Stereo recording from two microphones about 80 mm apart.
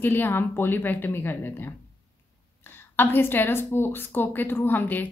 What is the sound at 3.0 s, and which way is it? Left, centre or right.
A woman's voice, left.